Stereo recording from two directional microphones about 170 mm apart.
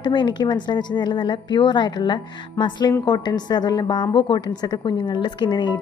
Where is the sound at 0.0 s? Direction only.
25° left (ahead or behind).